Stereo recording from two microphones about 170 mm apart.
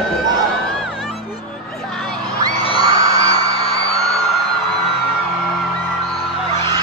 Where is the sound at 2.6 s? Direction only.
35° left (ahead or behind).